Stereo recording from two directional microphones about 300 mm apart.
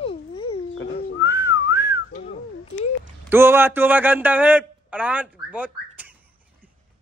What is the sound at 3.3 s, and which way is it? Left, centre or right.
A man's voice, centre.